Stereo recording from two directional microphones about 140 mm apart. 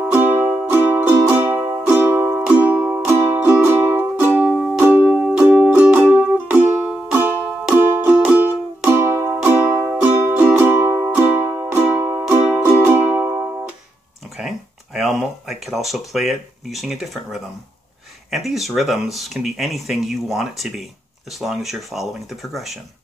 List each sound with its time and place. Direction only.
0.1 s music: 15° right (ahead or behind)
15.1 s speech: centre (ahead or behind)